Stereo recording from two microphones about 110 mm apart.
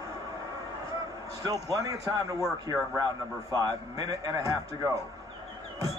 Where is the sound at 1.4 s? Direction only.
35° right (ahead or behind).